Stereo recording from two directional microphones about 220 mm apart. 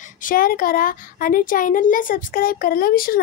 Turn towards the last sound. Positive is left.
turn(degrees=40)  # may be behind; listen again after turning